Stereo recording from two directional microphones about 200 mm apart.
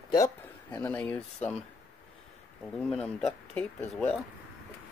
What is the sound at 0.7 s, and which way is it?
Speech, 5° left (ahead or behind).